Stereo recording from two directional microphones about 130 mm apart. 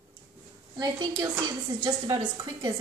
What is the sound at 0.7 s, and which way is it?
A woman's voice, 35° right (ahead or behind).